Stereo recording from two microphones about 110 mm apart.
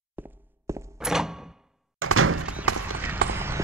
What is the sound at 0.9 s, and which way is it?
Door, 5° right (ahead or behind).